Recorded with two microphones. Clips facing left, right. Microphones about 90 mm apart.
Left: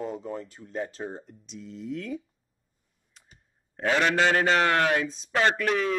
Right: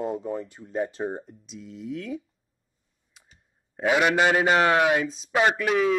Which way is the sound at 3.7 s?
10° right (ahead or behind).